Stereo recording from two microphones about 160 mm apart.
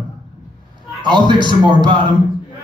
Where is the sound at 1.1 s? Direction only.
30° right (ahead or behind).